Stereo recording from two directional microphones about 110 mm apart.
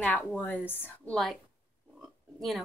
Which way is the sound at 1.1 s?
Centre (ahead or behind).